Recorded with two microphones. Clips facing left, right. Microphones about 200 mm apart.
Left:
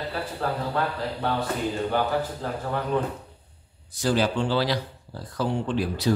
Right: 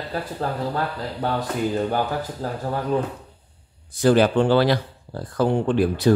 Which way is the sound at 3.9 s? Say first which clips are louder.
Right 7 dB; 55° right (ahead or behind).